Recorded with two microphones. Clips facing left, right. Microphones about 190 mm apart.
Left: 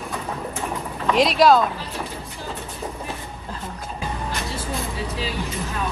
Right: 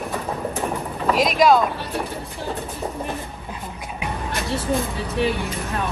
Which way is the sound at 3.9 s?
65° right (ahead or behind).